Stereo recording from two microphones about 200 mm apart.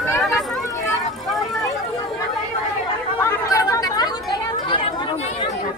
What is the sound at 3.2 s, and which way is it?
Chatter, 15° left (ahead or behind).